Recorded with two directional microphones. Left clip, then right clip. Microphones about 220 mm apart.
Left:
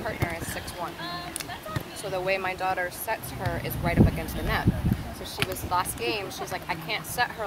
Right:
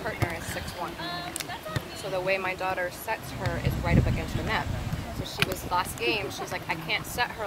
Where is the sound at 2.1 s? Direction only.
45° left (ahead or behind).